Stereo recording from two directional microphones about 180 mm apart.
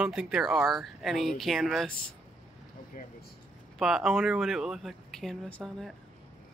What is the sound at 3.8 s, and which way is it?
Speech, centre (ahead or behind).